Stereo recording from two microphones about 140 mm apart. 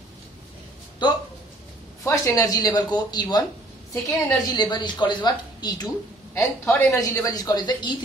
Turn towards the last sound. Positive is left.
turn(degrees=30)  # may be behind; listen again after turning